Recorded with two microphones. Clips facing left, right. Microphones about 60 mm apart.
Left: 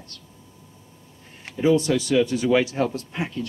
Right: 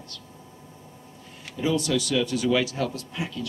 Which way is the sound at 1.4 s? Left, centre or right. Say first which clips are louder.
Left 6 dB; left.